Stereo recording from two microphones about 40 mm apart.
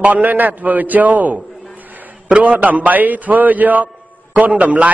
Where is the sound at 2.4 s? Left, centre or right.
Right.